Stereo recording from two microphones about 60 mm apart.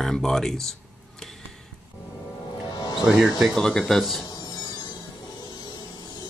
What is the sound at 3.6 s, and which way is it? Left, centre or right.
Speech, centre.